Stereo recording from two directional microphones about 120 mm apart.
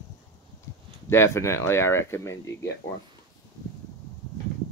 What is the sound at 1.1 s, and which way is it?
Speech, 20° left (ahead or behind).